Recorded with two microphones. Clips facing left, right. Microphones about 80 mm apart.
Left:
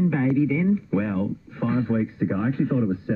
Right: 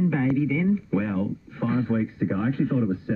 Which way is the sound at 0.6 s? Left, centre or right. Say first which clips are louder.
Left 1 dB; centre.